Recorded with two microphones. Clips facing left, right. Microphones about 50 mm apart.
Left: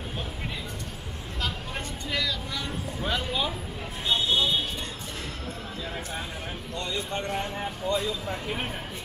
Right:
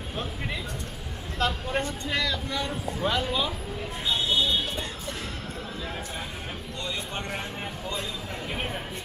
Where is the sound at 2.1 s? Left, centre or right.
Right.